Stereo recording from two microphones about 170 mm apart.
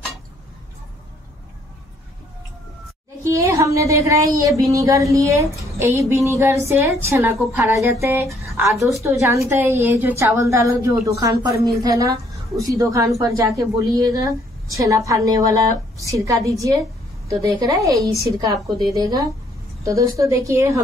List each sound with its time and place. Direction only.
3.3 s a woman's voice: 15° right (ahead or behind)